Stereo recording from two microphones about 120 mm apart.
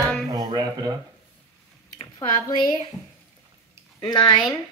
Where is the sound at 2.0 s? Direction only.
30° left (ahead or behind).